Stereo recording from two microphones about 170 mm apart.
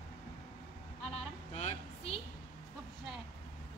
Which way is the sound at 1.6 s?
40° left (ahead or behind).